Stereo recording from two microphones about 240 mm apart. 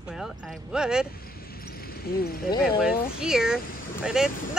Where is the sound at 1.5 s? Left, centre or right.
Left.